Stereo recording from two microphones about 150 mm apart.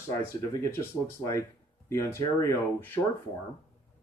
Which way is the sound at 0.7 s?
20° left (ahead or behind).